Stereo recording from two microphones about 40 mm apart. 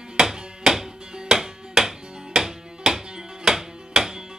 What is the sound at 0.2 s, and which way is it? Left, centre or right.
Music, centre.